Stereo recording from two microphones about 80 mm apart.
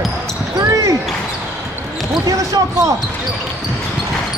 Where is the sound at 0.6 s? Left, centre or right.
Right.